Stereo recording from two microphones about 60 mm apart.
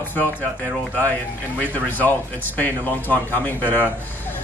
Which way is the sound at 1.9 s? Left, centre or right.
Left.